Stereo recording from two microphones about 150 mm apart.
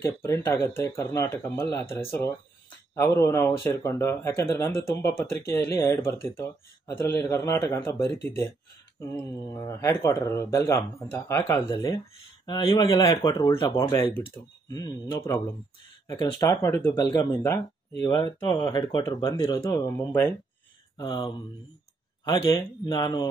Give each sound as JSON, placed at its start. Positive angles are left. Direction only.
{"t": 0.0, "sound": "speech", "side_deg": 20}
{"t": 9.4, "sound": "speech", "side_deg": 30}
{"t": 21.0, "sound": "speech", "side_deg": 25}